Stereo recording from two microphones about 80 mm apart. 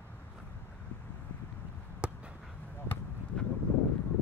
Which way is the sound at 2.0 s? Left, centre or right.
Centre.